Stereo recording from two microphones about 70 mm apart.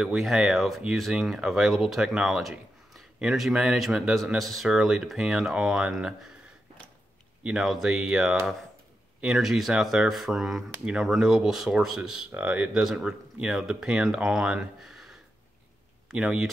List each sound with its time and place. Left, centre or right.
0.0 s speech: centre
7.4 s speech: centre
12.4 s speech: right
12.8 s speech: centre